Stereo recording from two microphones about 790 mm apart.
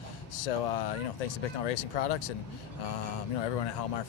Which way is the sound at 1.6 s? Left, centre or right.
Left.